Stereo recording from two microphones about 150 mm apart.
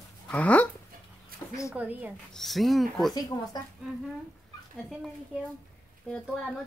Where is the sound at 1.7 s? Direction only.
10° right (ahead or behind).